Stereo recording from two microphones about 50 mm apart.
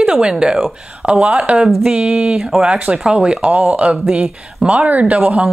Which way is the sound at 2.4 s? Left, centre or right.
Centre.